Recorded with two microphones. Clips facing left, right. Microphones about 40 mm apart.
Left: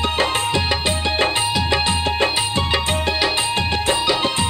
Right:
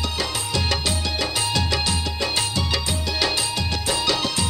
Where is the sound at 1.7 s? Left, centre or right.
Left.